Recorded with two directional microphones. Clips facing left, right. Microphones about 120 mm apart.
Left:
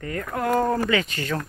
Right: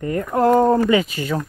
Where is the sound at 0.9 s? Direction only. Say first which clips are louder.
Right 6 dB; 10° right (ahead or behind).